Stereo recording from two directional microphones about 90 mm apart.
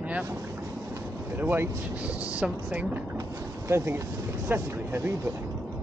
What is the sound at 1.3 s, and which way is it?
A woman's voice, 20° right (ahead or behind).